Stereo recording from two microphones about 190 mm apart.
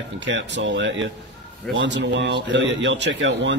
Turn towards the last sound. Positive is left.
turn(degrees=-70)  # may be behind; listen again after turning